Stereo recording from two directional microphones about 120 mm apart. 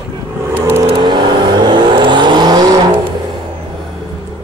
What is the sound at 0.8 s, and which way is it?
Vehicle, 40° right (ahead or behind).